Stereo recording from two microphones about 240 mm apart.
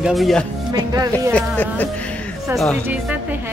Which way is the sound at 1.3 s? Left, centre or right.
Centre.